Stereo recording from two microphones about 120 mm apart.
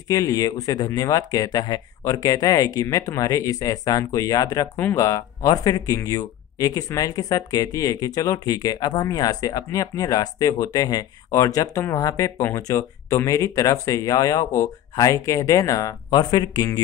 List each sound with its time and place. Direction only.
0.1 s speech: 30° left (ahead or behind)